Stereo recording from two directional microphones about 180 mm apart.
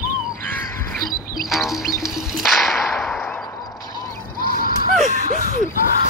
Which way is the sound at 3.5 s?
20° left (ahead or behind).